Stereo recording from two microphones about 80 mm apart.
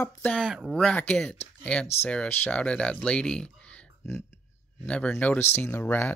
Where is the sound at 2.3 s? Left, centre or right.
Left.